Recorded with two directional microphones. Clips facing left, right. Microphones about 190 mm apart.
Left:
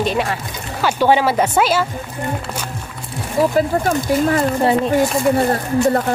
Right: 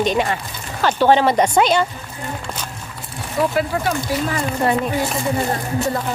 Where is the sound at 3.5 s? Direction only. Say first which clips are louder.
Left 4 dB; 45° left (ahead or behind).